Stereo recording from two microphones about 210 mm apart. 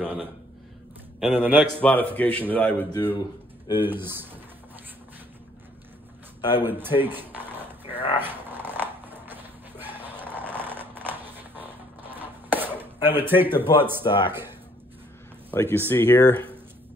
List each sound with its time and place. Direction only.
1.2 s speech: 10° right (ahead or behind)
1.8 s speech: 5° left (ahead or behind)
3.8 s speech: 10° right (ahead or behind)
6.5 s speech: 10° right (ahead or behind)
7.8 s a sound: 25° left (ahead or behind)
8.2 s dog: 10° right (ahead or behind)
13.6 s speech: 10° right (ahead or behind)
14.0 s speech: 20° left (ahead or behind)
15.5 s speech: 10° left (ahead or behind)